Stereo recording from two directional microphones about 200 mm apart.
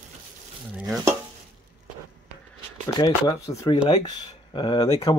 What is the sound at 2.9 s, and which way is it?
Speech, 15° left (ahead or behind).